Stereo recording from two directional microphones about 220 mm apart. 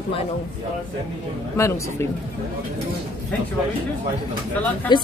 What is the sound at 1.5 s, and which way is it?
Speech, 15° left (ahead or behind).